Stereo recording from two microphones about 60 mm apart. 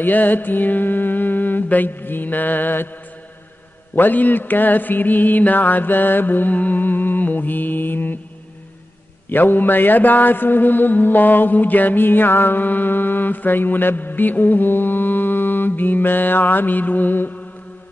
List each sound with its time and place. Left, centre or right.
0.0 s mantra: left
3.9 s mantra: left
9.3 s mantra: left